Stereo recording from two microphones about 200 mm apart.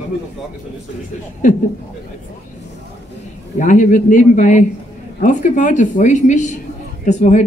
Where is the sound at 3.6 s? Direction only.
40° left (ahead or behind).